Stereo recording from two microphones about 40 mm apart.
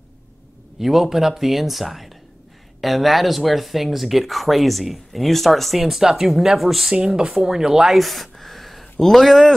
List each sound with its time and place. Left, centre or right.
0.7 s speech: centre
6.9 s speech: centre
7.9 s a sound: centre
9.0 s speech: centre